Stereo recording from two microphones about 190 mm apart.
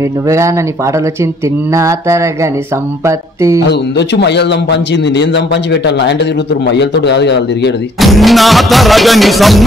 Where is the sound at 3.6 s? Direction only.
65° left (ahead or behind).